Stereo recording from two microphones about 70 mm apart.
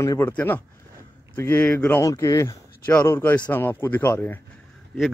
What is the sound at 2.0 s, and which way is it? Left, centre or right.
Speech, left.